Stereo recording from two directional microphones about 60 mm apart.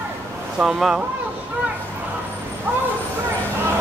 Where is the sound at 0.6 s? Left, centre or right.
Centre.